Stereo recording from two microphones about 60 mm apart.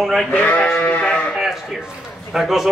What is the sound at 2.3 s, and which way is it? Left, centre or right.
Speech, centre.